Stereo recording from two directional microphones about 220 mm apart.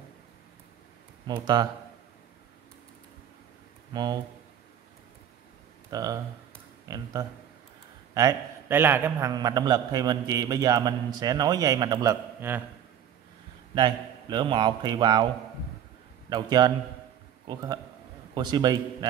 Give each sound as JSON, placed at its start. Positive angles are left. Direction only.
{"t": 1.2, "sound": "a man's voice", "side_deg": -20}
{"t": 3.9, "sound": "speech", "side_deg": -20}
{"t": 5.9, "sound": "a man's voice", "side_deg": -15}
{"t": 13.7, "sound": "a man's voice", "side_deg": -20}
{"t": 16.3, "sound": "a man's voice", "side_deg": -20}